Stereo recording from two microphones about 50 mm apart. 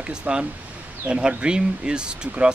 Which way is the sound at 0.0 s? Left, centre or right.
Right.